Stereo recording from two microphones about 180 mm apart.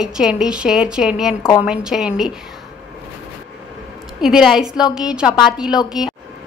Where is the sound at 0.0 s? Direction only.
5° right (ahead or behind).